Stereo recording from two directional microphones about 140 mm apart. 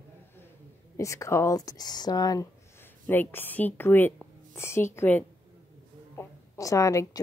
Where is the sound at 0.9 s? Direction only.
20° left (ahead or behind).